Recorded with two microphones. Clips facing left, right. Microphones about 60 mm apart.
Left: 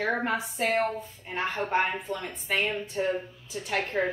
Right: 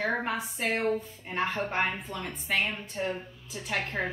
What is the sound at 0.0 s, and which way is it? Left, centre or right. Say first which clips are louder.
Speech: left 2 dB; centre.